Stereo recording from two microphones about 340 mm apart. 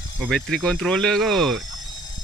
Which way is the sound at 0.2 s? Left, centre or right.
Centre.